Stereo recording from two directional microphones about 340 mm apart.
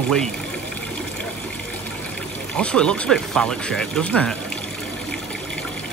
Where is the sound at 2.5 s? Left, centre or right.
Centre.